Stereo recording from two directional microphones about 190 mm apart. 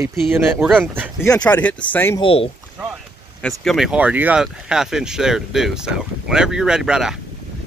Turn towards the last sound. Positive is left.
turn(degrees=-5)  # may be behind; listen again after turning